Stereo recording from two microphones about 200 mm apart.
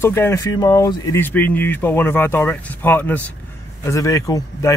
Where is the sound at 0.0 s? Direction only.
10° left (ahead or behind).